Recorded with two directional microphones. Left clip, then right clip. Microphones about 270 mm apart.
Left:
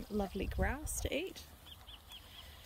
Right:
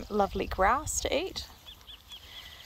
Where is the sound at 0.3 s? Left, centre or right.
Centre.